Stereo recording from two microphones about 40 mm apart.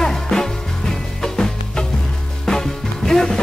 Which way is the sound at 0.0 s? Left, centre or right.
Centre.